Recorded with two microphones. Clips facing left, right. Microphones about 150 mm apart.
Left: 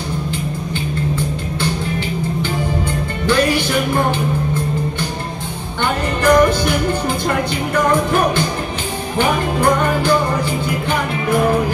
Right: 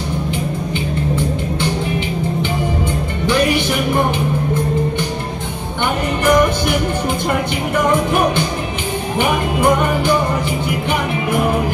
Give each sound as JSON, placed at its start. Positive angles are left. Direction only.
{"t": 3.3, "sound": "music", "side_deg": -20}
{"t": 6.2, "sound": "music", "side_deg": -20}
{"t": 9.2, "sound": "music", "side_deg": -20}